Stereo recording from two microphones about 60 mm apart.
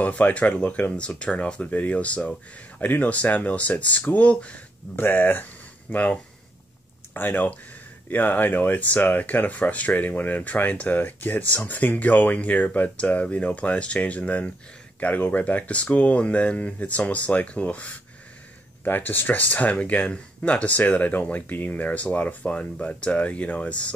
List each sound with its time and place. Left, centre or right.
0.0 s speech: left
4.9 s speech: left
7.2 s speech: left